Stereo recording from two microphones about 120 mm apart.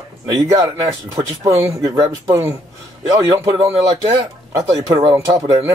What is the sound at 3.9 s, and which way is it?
Speech, 30° right (ahead or behind).